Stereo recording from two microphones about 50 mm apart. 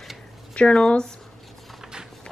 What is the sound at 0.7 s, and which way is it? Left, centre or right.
Speech, centre.